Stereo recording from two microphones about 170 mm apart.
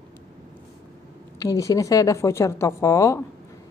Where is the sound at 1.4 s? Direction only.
20° left (ahead or behind).